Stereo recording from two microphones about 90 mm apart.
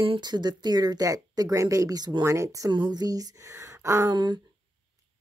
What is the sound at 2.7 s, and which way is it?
Speech, 50° right (ahead or behind).